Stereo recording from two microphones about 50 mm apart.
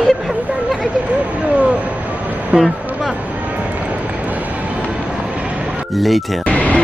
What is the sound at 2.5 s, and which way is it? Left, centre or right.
Speech, right.